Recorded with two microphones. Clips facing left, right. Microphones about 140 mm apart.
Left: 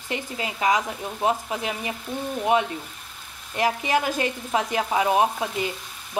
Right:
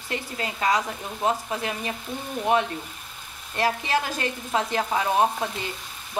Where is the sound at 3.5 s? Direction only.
15° left (ahead or behind).